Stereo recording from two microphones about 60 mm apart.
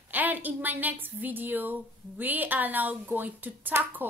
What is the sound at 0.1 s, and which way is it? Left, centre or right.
A woman's voice, right.